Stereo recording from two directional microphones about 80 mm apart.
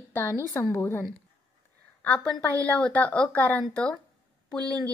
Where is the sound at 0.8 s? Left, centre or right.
Left.